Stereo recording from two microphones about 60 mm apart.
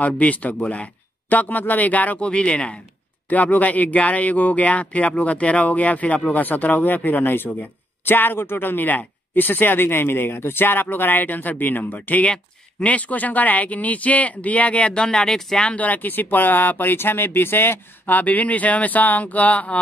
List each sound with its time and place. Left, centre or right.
0.0 s speech: left
15.7 s speech: left